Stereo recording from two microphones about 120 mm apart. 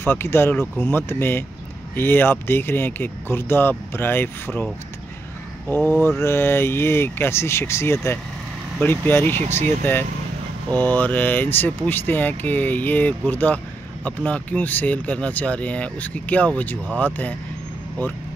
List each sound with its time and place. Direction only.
0.0 s speech: 20° left (ahead or behind)
5.9 s speech: 20° left (ahead or behind)